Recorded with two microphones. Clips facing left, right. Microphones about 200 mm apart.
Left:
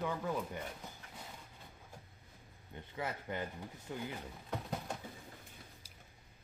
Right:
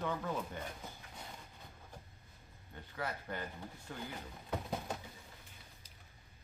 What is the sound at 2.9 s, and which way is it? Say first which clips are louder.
A man's voice: left 1 dB; 20° left (ahead or behind).